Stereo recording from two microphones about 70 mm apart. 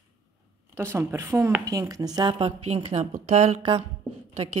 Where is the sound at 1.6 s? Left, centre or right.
Right.